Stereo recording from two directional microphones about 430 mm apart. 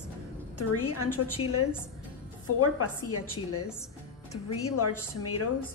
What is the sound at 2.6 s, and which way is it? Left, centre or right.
A woman's voice, left.